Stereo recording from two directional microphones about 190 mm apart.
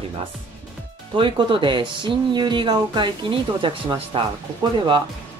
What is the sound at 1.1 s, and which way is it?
Speech, 25° right (ahead or behind).